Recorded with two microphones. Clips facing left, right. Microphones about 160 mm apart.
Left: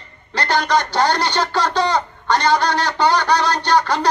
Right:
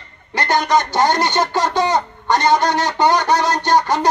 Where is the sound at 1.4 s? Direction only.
20° right (ahead or behind).